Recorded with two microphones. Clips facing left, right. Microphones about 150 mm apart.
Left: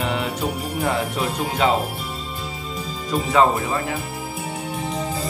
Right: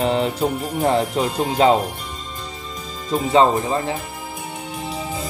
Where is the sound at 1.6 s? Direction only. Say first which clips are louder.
Right 5 dB; 35° right (ahead or behind).